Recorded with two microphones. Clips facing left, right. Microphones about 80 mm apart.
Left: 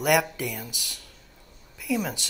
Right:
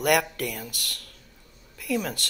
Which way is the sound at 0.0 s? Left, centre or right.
Centre.